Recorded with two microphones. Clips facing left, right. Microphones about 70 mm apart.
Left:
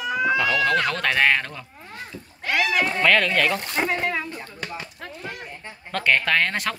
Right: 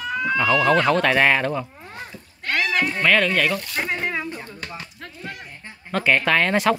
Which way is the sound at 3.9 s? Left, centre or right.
Centre.